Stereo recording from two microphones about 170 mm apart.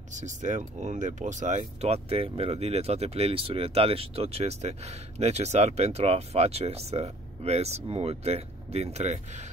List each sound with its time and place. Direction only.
0.1 s speech: 45° right (ahead or behind)